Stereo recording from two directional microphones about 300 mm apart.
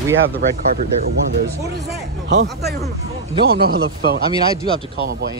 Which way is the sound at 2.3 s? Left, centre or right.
Right.